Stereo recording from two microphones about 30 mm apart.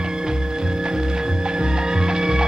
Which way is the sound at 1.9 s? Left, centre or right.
Right.